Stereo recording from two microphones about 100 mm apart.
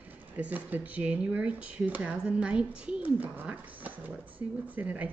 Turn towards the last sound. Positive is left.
turn(degrees=-15)  # may be behind; listen again after turning